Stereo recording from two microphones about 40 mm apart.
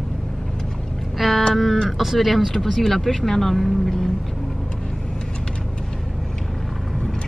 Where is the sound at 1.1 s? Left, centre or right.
Centre.